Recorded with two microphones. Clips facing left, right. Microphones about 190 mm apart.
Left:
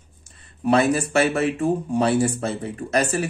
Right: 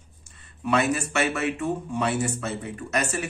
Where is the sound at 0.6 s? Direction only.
35° left (ahead or behind).